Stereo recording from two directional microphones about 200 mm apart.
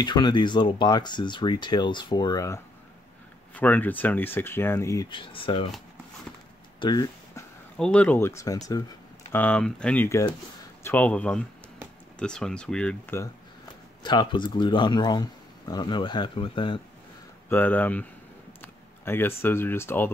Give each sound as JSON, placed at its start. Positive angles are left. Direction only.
{"t": 0.0, "sound": "speech", "side_deg": 20}
{"t": 6.8, "sound": "a sound", "side_deg": 20}
{"t": 7.7, "sound": "speech", "side_deg": 5}
{"t": 14.0, "sound": "speech", "side_deg": 20}
{"t": 17.5, "sound": "speech", "side_deg": 10}